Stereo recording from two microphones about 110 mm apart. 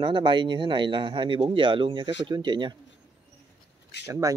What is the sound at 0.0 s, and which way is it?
Speech, 45° right (ahead or behind).